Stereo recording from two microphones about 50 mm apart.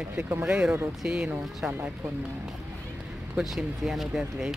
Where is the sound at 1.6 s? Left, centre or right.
Right.